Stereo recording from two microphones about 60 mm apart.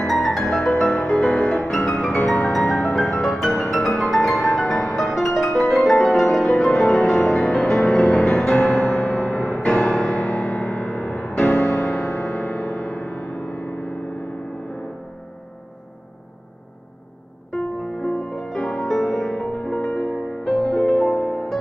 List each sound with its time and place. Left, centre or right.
0.0 s music: centre; by 13.4 s left
13.5 s music: left
17.5 s music: centre
19.5 s music: left
20.6 s music: centre
21.2 s music: centre